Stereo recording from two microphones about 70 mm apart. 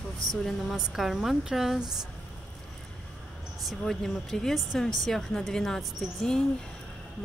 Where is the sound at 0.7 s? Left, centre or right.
Centre.